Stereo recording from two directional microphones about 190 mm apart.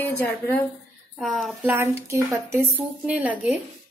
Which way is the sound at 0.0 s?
10° left (ahead or behind).